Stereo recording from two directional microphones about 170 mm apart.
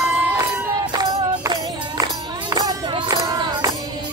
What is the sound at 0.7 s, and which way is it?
Music, 20° right (ahead or behind).